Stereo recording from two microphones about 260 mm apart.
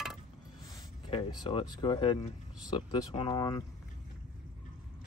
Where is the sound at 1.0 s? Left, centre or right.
Centre.